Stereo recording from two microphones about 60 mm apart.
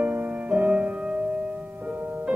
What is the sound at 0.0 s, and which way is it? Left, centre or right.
Music, right.